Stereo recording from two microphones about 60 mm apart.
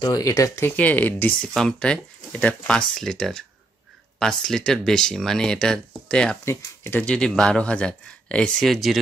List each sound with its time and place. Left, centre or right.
0.1 s speech: left
0.7 s speech: left
1.4 s speech: centre
6.4 s speech: left
7.2 s speech: centre
8.6 s speech: centre